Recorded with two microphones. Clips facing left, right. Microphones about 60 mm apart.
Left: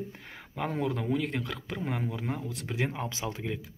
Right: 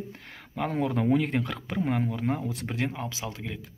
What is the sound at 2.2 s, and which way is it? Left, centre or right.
Speech, centre.